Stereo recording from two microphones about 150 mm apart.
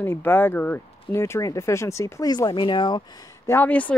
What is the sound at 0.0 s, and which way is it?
Speech, 15° left (ahead or behind).